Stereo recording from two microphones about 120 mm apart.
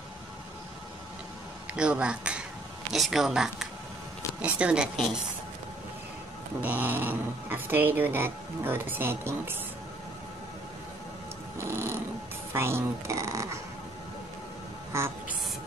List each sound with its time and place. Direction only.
1.7 s speech: 10° right (ahead or behind)
6.6 s speech: 15° right (ahead or behind)
11.5 s cat: 20° right (ahead or behind)
12.5 s speech: 20° right (ahead or behind)
14.9 s a sound: 20° right (ahead or behind)